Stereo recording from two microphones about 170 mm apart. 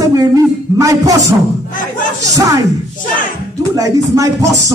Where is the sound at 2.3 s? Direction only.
20° right (ahead or behind).